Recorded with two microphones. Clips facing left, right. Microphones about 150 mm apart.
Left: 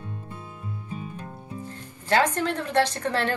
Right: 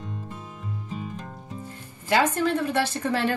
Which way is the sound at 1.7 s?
10° right (ahead or behind).